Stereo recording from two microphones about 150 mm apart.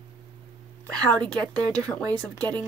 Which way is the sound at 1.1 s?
5° left (ahead or behind).